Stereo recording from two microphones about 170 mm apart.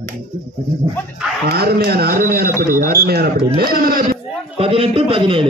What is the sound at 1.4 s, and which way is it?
Speech, 65° right (ahead or behind).